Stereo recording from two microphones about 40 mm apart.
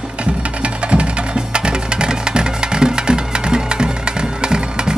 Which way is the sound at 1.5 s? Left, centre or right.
Right.